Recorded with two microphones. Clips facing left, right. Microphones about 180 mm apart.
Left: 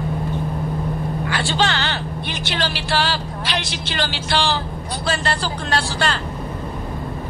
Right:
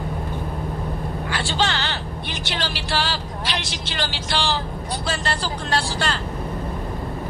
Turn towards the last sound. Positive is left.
turn(degrees=65)  # may be behind; listen again after turning